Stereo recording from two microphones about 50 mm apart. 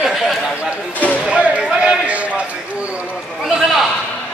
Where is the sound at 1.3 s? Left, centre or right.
Right.